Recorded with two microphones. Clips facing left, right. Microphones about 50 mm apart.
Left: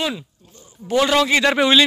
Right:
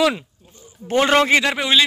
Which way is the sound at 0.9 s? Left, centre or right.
Right.